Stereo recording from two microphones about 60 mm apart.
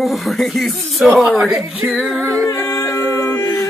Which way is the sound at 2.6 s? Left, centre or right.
Left.